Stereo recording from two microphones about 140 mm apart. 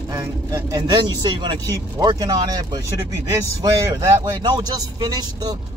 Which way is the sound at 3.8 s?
30° right (ahead or behind).